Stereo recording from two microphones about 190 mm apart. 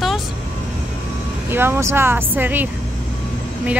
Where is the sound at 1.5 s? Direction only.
10° right (ahead or behind).